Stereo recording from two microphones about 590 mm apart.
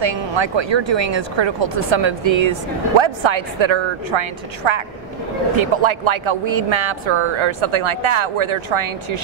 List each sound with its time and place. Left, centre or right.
0.0 s speech: right